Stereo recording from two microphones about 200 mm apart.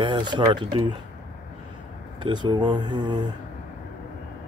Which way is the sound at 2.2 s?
20° right (ahead or behind).